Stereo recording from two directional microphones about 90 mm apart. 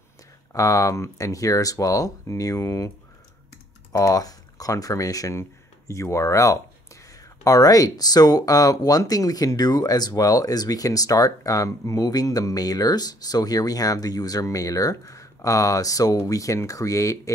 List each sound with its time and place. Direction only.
0.5 s speech: 40° left (ahead or behind)
3.9 s speech: 40° left (ahead or behind)